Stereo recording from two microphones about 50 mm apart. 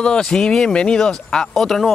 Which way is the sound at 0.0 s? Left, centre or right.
Centre.